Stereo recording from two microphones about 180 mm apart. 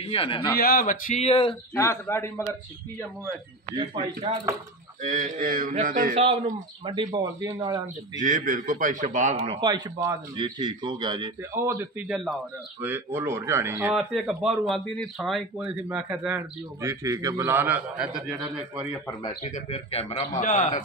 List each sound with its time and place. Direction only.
0.0 s a man's voice: 30° left (ahead or behind)
0.6 s a man's voice: 55° left (ahead or behind)
1.2 s a man's voice: 30° left (ahead or behind)
1.8 s a man's voice: 15° left (ahead or behind)
3.7 s a man's voice: 30° right (ahead or behind)
5.0 s a man's voice: 45° right (ahead or behind)
6.1 s speech: 35° right (ahead or behind)
7.2 s speech: 15° right (ahead or behind)
8.2 s a man's voice: 45° right (ahead or behind)
9.6 s a man's voice: 20° right (ahead or behind)
11.5 s a man's voice: 15° right (ahead or behind)
19.2 s a man's voice: 35° left (ahead or behind)